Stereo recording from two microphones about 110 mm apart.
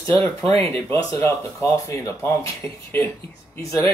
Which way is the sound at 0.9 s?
25° left (ahead or behind).